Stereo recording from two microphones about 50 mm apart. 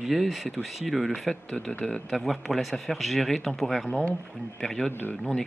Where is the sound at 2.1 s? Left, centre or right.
Centre.